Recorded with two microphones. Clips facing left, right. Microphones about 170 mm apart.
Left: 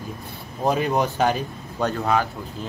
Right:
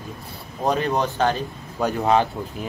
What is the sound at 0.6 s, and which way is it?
Speech, 10° left (ahead or behind).